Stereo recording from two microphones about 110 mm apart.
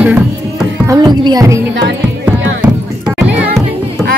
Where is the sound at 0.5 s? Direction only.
30° right (ahead or behind).